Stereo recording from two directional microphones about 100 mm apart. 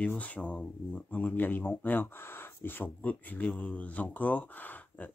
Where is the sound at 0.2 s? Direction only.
15° left (ahead or behind).